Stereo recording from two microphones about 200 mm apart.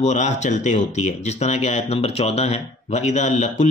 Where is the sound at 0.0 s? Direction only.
35° left (ahead or behind).